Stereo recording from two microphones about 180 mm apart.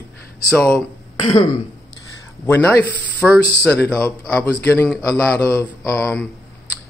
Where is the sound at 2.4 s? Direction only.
15° left (ahead or behind).